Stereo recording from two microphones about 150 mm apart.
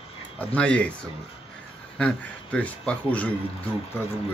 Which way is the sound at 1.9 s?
10° left (ahead or behind).